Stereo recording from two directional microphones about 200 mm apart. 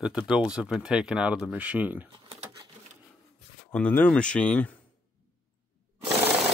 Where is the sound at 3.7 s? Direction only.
10° left (ahead or behind).